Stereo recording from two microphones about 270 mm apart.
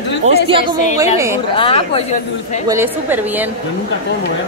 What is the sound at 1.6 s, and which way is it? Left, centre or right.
Speech, left.